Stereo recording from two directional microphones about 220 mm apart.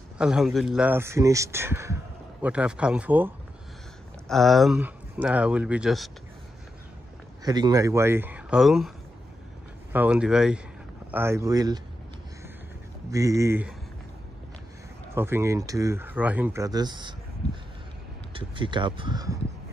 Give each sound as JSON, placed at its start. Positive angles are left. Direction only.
{"t": 0.2, "sound": "speech", "side_deg": 0}
{"t": 7.4, "sound": "speech", "side_deg": -20}
{"t": 9.9, "sound": "speech", "side_deg": -5}
{"t": 13.1, "sound": "speech", "side_deg": -15}
{"t": 15.1, "sound": "speech", "side_deg": -10}
{"t": 18.3, "sound": "speech", "side_deg": -20}